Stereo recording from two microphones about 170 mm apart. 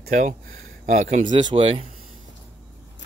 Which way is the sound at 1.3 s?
30° right (ahead or behind).